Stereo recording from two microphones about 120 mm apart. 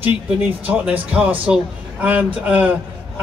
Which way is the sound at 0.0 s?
10° right (ahead or behind).